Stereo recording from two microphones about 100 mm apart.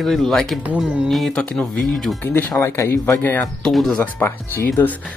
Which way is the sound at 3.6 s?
5° left (ahead or behind).